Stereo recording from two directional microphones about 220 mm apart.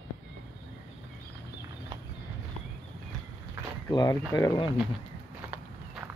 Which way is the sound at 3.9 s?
15° left (ahead or behind).